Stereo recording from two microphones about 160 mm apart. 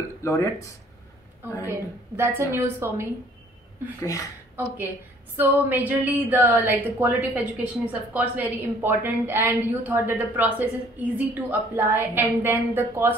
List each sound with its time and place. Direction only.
0.2 s speech: 20° left (ahead or behind)
1.4 s speech: 15° right (ahead or behind)
4.0 s speech: 20° left (ahead or behind)
5.4 s speech: 10° right (ahead or behind)